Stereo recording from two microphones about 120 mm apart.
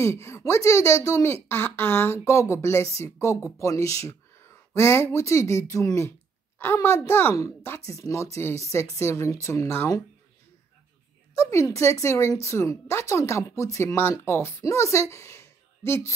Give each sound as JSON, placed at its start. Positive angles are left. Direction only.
{"t": 0.0, "sound": "speech", "side_deg": 25}
{"t": 11.7, "sound": "speech", "side_deg": 25}